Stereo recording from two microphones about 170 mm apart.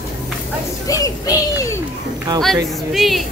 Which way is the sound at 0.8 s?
20° left (ahead or behind).